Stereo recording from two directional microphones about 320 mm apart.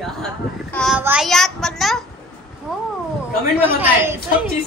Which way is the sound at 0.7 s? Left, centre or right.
Centre.